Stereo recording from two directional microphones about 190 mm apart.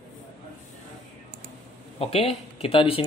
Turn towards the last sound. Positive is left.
turn(degrees=30)  # may be behind; listen again after turning